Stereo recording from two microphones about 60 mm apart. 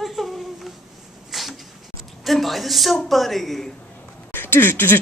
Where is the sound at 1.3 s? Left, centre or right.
Centre.